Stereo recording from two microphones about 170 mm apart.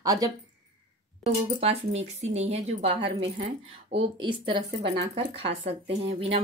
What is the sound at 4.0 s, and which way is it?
Speech, 30° right (ahead or behind).